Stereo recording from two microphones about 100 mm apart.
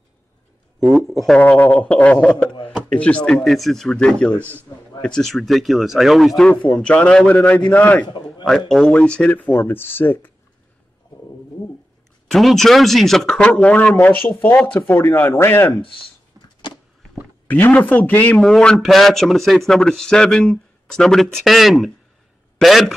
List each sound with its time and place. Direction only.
0.8 s a man's voice: centre (ahead or behind)
1.4 s a man's voice: 15° left (ahead or behind)
8.6 s a man's voice: 5° left (ahead or behind); by 10.3 s 20° left (ahead or behind)
12.3 s a man's voice: centre (ahead or behind); by 15.7 s 25° left (ahead or behind)
17.5 s speech: 15° left (ahead or behind)
18.4 s a man's voice: 5° left (ahead or behind)